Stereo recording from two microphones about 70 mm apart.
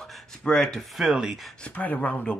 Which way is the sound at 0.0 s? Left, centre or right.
Centre.